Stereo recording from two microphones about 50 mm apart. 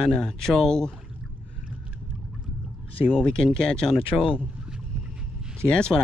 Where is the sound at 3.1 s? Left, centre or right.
Centre.